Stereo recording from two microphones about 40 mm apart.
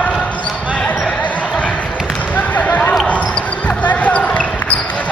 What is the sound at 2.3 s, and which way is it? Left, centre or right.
Basketball bounce, left.